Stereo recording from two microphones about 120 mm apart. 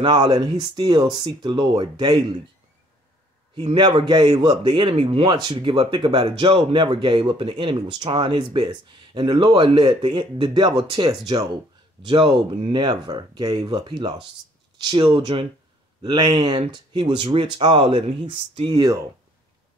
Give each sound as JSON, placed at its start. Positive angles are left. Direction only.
{"t": 0.0, "sound": "speech", "side_deg": -40}
{"t": 3.7, "sound": "speech", "side_deg": -40}
{"t": 5.3, "sound": "speech", "side_deg": -40}
{"t": 12.0, "sound": "speech", "side_deg": -45}
{"t": 12.7, "sound": "speech", "side_deg": -40}
{"t": 15.0, "sound": "speech", "side_deg": -50}